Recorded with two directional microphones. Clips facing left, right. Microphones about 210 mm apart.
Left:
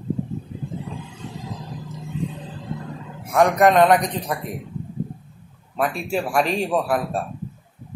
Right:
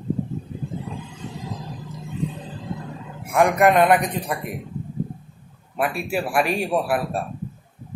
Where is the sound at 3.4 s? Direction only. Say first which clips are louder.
Left 1 dB; 10° right (ahead or behind).